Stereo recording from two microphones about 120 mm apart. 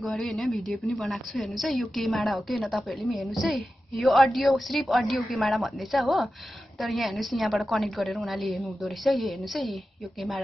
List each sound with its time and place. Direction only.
0.0 s a woman's voice: centre (ahead or behind)